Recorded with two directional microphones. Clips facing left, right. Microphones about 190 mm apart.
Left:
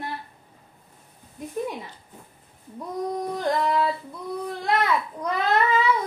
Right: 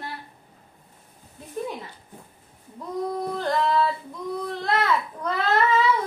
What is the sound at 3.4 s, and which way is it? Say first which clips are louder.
A child's voice: right 1 dB; 15° left (ahead or behind).